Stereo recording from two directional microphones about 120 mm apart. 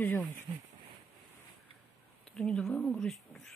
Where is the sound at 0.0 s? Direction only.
15° left (ahead or behind).